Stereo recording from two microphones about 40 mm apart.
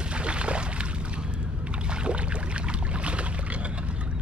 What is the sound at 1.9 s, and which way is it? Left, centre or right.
Boat, right.